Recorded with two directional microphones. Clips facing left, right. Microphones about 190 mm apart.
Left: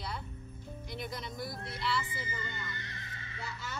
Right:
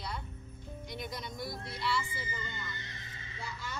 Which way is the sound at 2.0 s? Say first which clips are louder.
Even; 25° left (ahead or behind).